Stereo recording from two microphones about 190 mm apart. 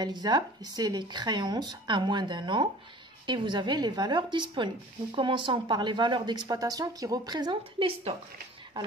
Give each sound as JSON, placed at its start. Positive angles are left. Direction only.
{"t": 0.0, "sound": "speech", "side_deg": -20}